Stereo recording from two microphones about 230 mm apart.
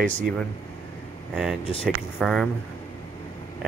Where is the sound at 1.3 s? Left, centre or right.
Centre.